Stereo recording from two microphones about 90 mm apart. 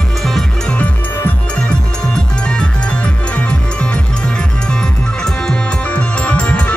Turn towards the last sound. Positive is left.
turn(degrees=15)  # may be behind; listen again after turning